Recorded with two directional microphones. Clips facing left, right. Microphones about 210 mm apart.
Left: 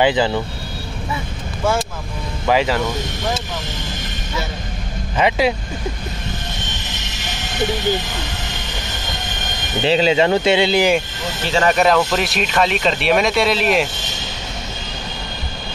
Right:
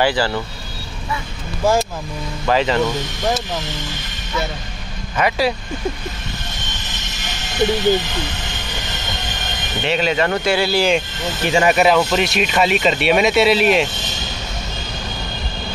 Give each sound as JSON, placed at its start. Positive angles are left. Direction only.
{"t": 0.0, "sound": "speech", "side_deg": 20}
{"t": 2.4, "sound": "speech", "side_deg": 10}
{"t": 5.1, "sound": "speech", "side_deg": 25}
{"t": 9.8, "sound": "speech", "side_deg": 25}
{"t": 11.4, "sound": "speech", "side_deg": -10}